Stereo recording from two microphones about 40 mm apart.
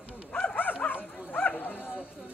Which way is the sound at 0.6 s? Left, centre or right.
Left.